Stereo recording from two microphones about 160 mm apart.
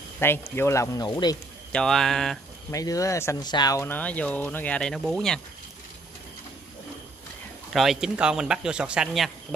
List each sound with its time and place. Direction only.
0.2 s speech: 15° left (ahead or behind)
1.7 s speech: 5° left (ahead or behind)
2.7 s speech: 20° left (ahead or behind); by 5.4 s centre (ahead or behind)
7.7 s speech: centre (ahead or behind)